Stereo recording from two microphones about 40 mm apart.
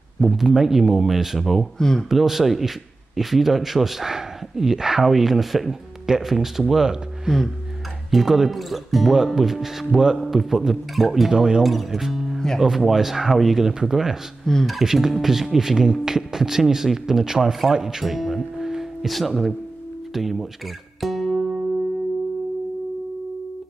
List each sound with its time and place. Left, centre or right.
0.2 s a man's voice: centre
1.8 s speech: centre
2.0 s a man's voice: centre
8.1 s a man's voice: centre
11.2 s speech: centre
11.6 s a man's voice: centre
14.4 s speech: centre
14.7 s a man's voice: centre
18.0 s tuning fork: centre
19.1 s speech: centre